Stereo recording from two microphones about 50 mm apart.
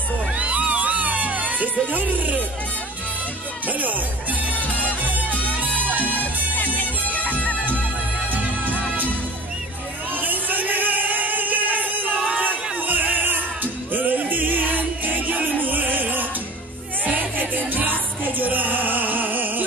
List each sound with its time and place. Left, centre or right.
0.4 s music: right
3.6 s music: right
6.5 s music: left
10.2 s music: right
12.4 s a sound: right
13.9 s music: right